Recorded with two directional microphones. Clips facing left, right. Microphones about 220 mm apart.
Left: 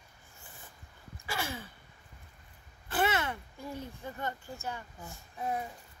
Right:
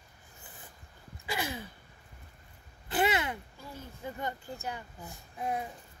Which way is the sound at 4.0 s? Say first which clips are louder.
Right 1 dB; 15° right (ahead or behind).